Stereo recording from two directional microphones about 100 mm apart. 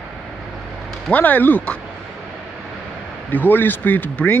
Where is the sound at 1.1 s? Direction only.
15° left (ahead or behind).